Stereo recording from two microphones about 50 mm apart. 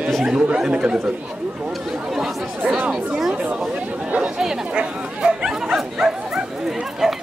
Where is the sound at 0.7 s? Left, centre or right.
Centre.